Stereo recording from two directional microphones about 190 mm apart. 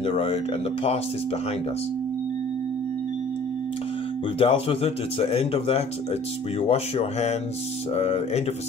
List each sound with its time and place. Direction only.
0.0 s speech: 30° left (ahead or behind)
4.4 s speech: 30° left (ahead or behind)